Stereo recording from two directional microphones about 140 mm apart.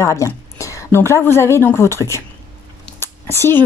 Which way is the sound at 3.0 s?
20° left (ahead or behind).